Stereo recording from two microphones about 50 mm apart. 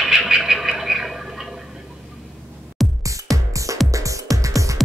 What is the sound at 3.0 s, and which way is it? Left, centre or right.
Music, right.